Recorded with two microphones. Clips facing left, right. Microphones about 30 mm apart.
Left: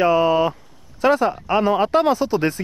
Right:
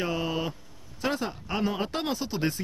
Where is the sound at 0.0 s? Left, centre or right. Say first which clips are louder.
Left 13 dB; left.